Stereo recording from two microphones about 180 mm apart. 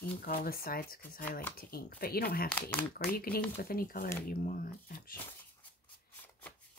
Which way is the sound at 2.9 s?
55° left (ahead or behind).